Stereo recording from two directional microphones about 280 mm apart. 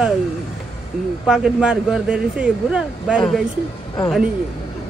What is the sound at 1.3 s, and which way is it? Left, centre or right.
A man's voice, centre.